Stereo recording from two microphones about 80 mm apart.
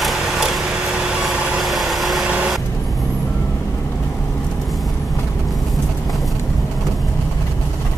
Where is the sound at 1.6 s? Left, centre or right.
Centre.